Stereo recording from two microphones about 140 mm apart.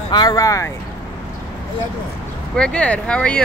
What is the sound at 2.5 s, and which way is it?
Speech, 5° left (ahead or behind).